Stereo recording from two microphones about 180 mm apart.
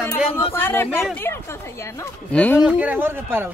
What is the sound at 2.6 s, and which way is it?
Speech, 5° right (ahead or behind).